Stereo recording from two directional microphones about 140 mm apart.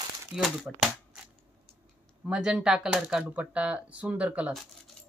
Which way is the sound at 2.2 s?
5° right (ahead or behind).